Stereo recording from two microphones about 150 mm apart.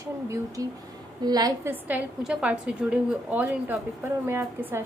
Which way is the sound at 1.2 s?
25° right (ahead or behind).